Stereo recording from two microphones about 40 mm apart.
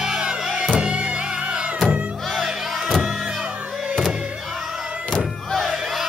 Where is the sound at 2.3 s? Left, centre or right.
Centre.